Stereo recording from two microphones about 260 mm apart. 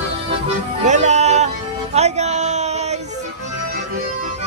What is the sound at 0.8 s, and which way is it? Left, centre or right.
Music, right.